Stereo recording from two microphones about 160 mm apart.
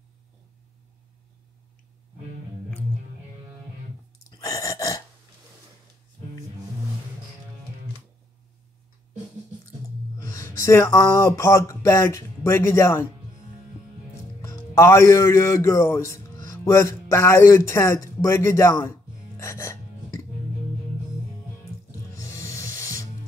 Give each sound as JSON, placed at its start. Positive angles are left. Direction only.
{"t": 4.4, "sound": "gasp", "side_deg": 20}
{"t": 10.1, "sound": "speech", "side_deg": 20}
{"t": 14.4, "sound": "a man's voice", "side_deg": 15}
{"t": 22.1, "sound": "snake", "side_deg": 20}